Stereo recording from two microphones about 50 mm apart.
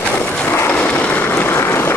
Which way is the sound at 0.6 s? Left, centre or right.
Left.